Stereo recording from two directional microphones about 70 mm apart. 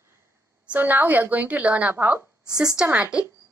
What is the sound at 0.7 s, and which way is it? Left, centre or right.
A woman's voice, right.